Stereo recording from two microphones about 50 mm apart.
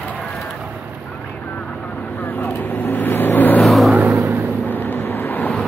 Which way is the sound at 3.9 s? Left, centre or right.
Right.